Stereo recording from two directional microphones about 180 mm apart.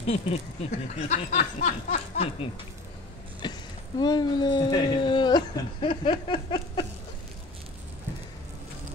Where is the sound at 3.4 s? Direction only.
25° left (ahead or behind).